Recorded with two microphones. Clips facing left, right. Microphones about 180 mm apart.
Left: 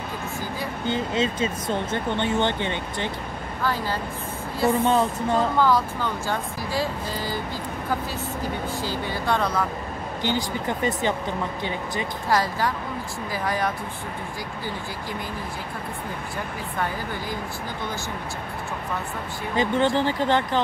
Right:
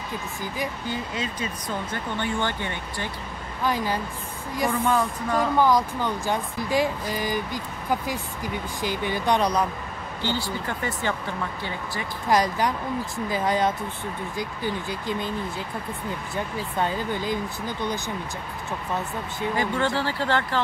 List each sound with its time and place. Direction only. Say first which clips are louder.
0.8 s speech: left 6 dB; 25° left (ahead or behind)
3.6 s speech: right 1 dB; 15° right (ahead or behind)
4.8 s speech: left 3 dB; 25° left (ahead or behind)
5.6 s speech: right 1 dB; 15° right (ahead or behind)
10.2 s speech: left 2 dB; 15° left (ahead or behind)
12.3 s speech: right 2 dB; 20° right (ahead or behind)
16.7 s speech: right 3 dB; 20° right (ahead or behind)
19.5 s speech: left 4 dB; 20° left (ahead or behind)